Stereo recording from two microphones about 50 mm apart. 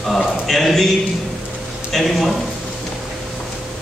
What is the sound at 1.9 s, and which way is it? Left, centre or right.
Speech, centre.